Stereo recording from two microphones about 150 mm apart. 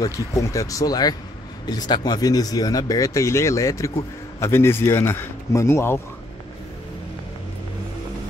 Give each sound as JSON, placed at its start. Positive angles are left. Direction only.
{"t": 0.0, "sound": "speech", "side_deg": 20}